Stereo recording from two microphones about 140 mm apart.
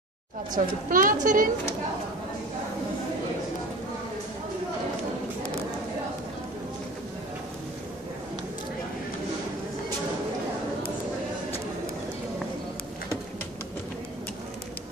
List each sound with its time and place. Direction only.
0.5 s a child's voice: 75° right (ahead or behind)